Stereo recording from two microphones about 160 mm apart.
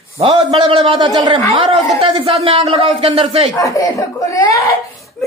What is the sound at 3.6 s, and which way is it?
Speech, 20° left (ahead or behind).